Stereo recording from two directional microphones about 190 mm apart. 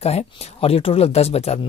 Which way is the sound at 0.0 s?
30° left (ahead or behind).